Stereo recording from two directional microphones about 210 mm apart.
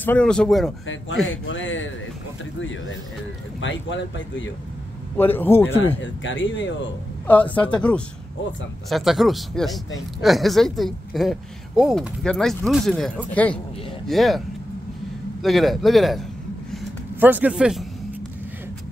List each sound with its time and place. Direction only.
0.0 s speech: 5° left (ahead or behind)
1.3 s speech: 65° left (ahead or behind)
3.6 s speech: 60° left (ahead or behind)
5.1 s a man's voice: 10° left (ahead or behind)
5.9 s speech: 60° left (ahead or behind)
7.2 s a man's voice: 5° left (ahead or behind)
8.8 s speech: centre (ahead or behind)
15.4 s speech: centre (ahead or behind)
16.7 s a sound: 5° right (ahead or behind)